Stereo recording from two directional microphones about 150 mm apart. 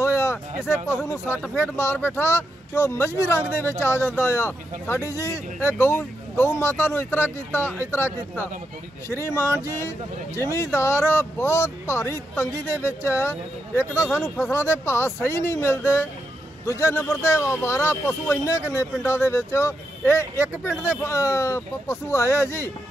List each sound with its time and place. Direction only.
0.0 s a sound: 20° left (ahead or behind)
0.8 s speech: 20° left (ahead or behind)
9.1 s speech: 20° left (ahead or behind)